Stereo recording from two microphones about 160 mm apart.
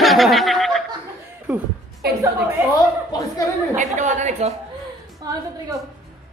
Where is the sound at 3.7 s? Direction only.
50° right (ahead or behind).